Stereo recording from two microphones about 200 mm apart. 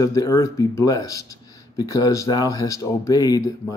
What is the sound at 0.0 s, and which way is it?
Speech, 15° left (ahead or behind).